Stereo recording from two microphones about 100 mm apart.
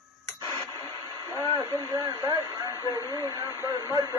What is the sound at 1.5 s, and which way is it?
Speech, 30° right (ahead or behind).